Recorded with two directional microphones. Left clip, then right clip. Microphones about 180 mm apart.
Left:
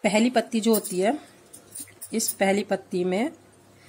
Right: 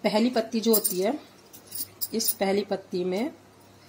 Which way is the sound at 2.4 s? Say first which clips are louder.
Left 4 dB; 35° left (ahead or behind).